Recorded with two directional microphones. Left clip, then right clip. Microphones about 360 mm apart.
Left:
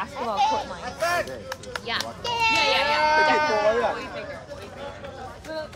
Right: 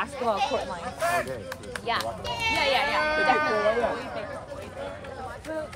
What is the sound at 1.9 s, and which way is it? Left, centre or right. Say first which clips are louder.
Speech: left 4 dB; centre.